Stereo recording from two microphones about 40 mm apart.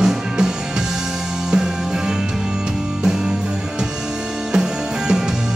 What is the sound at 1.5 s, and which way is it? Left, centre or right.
Music, centre.